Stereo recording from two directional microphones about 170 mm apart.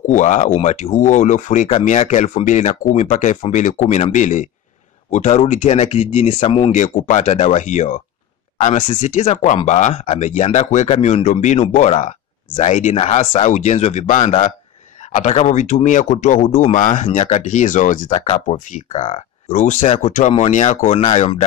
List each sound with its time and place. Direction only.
0.0 s speech: 45° left (ahead or behind)
6.7 s speech: 45° left (ahead or behind)
18.1 s speech: 35° left (ahead or behind)